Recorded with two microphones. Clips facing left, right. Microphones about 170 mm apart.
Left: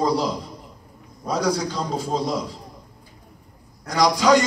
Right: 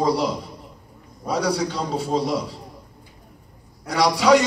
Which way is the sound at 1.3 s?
5° right (ahead or behind).